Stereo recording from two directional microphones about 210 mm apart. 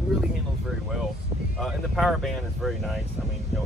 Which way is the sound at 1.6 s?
Centre (ahead or behind).